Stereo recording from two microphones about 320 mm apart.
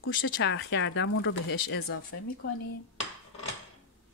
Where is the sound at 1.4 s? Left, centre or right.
Left.